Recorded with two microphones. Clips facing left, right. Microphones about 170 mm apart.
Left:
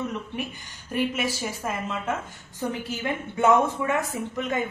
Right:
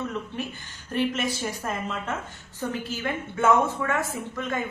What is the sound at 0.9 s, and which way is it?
A woman's voice, 10° left (ahead or behind).